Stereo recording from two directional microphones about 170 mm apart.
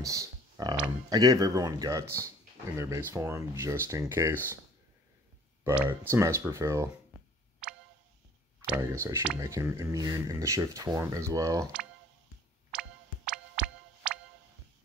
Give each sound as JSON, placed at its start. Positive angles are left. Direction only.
{"t": 0.0, "sound": "clicking", "side_deg": -20}
{"t": 1.1, "sound": "speech", "side_deg": -20}
{"t": 5.6, "sound": "speech", "side_deg": -15}
{"t": 7.6, "sound": "tick", "side_deg": -5}
{"t": 8.5, "sound": "speech", "side_deg": -10}
{"t": 12.7, "sound": "music", "side_deg": -5}